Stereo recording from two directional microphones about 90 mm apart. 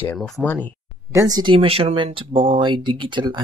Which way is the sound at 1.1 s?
35° right (ahead or behind).